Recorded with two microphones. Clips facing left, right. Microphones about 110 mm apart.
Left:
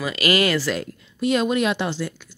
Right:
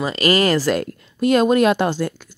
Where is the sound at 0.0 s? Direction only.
35° right (ahead or behind).